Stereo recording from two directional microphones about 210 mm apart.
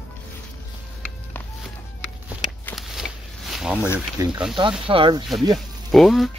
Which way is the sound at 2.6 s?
Centre (ahead or behind).